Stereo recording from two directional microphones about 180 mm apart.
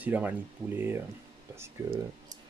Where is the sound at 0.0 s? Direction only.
10° right (ahead or behind).